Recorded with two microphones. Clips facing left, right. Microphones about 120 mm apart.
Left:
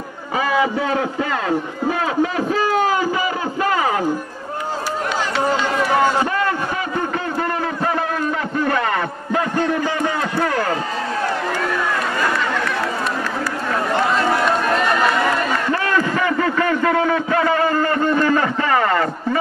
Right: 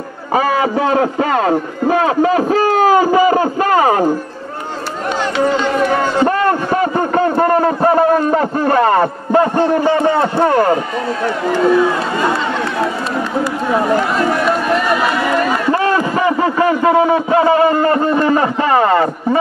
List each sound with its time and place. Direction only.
0.3 s a man's voice: 50° right (ahead or behind)
6.2 s a sound: 45° right (ahead or behind)
9.6 s a man's voice: 30° right (ahead or behind)
15.7 s a man's voice: 25° right (ahead or behind)